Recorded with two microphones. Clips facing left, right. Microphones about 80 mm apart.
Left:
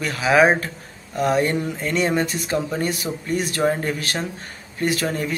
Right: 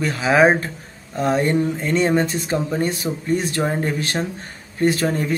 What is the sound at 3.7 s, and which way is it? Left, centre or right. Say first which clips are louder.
Speech: even; right.